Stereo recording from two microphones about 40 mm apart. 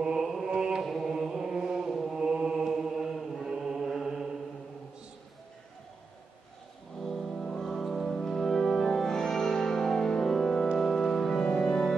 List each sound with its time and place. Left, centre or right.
0.2 s mantra: centre
0.5 s mantra: right
0.8 s mantra: centre
1.1 s chant: centre
2.0 s mantra: right
3.4 s music: centre
7.0 s music: centre
10.8 s organ: centre